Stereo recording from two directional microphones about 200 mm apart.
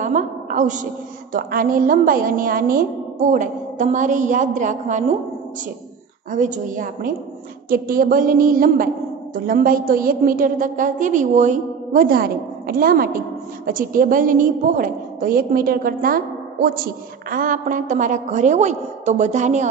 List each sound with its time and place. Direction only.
0.0 s a sound: 40° right (ahead or behind)
1.3 s a woman's voice: 45° right (ahead or behind)
6.3 s a woman's voice: 40° right (ahead or behind)